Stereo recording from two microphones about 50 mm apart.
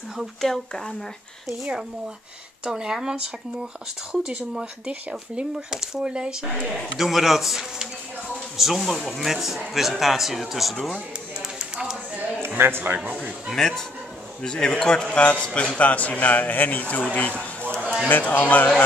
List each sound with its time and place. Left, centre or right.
0.4 s speech: centre
1.6 s speech: centre
5.7 s speech: centre
7.0 s a man's voice: centre
11.5 s a sound: centre
12.4 s a man's voice: right
12.9 s a man's voice: right
13.5 s a man's voice: centre; by 17.3 s left
17.4 s a sound: left
18.0 s speech: left